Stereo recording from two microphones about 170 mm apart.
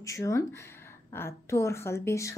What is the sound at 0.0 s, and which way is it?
A woman's voice, 20° left (ahead or behind).